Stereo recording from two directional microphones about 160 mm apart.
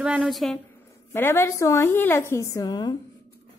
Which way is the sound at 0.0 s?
5° right (ahead or behind).